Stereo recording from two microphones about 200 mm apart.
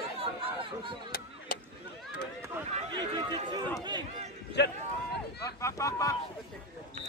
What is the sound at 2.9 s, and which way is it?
Speech, 20° right (ahead or behind).